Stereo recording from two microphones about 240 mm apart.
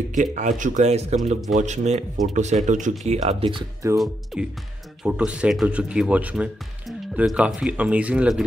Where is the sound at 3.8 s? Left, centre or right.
Centre.